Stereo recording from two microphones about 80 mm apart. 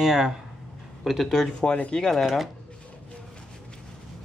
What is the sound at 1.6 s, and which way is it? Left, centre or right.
Speech, centre.